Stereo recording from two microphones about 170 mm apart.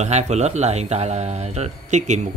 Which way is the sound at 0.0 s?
40° right (ahead or behind).